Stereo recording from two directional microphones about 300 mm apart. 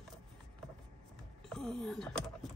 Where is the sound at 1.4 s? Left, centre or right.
Centre.